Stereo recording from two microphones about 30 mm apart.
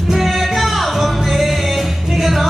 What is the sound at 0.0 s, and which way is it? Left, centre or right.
Music, centre.